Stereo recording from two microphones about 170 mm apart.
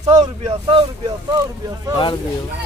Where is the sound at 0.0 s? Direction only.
25° right (ahead or behind).